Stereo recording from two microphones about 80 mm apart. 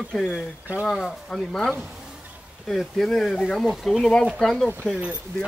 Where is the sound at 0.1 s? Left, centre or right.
Centre.